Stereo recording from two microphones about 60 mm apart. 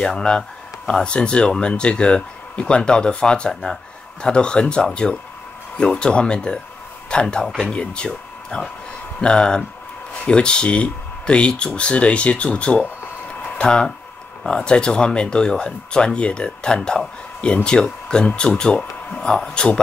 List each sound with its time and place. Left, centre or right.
0.0 s speech: centre